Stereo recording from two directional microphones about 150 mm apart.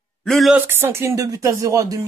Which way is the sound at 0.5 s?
15° right (ahead or behind).